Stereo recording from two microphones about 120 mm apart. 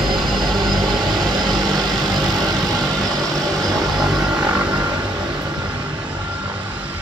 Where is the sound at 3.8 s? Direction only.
Centre (ahead or behind).